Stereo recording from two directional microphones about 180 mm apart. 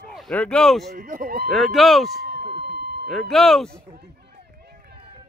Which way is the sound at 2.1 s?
60° right (ahead or behind).